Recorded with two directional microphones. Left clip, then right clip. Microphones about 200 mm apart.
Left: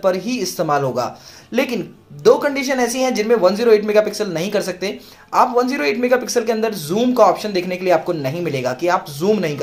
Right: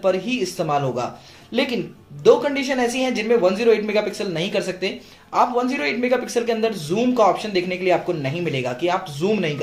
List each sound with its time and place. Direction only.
0.0 s speech: 30° left (ahead or behind)